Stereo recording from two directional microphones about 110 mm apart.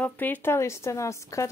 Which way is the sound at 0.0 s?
15° left (ahead or behind).